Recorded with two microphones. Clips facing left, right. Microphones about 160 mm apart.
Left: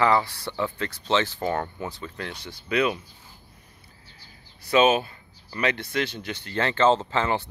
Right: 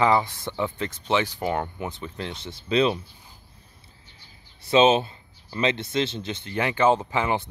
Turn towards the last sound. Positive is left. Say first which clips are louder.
# even
turn(degrees=-15)  # may be behind; listen again after turning